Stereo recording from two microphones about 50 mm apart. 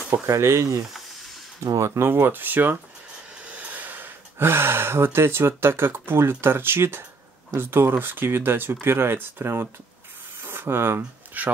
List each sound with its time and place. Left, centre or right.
0.3 s speech: right
2.0 s speech: right
10.4 s a sound: right
11.4 s speech: right